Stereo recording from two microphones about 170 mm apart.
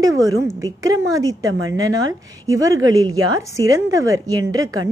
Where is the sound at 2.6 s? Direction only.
20° right (ahead or behind).